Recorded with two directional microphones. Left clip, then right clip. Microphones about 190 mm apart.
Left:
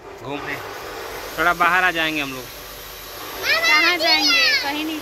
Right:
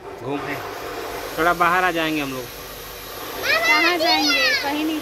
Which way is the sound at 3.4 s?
55° right (ahead or behind).